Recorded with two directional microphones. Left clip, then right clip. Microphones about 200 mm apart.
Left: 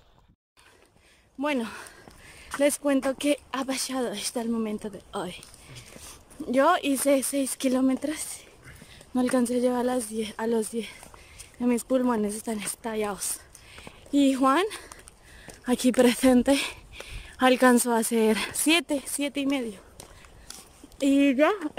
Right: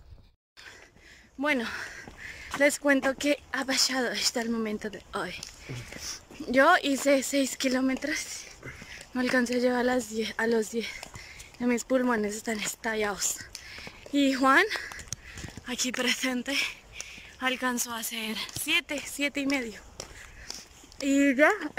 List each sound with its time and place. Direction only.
1.4 s speech: 10° left (ahead or behind)
6.4 s speech: 10° left (ahead or behind)
13.7 s walk: 15° left (ahead or behind)
15.6 s speech: 45° left (ahead or behind); by 18.8 s 60° left (ahead or behind)
19.1 s speech: 15° left (ahead or behind)
21.0 s speech: 10° left (ahead or behind)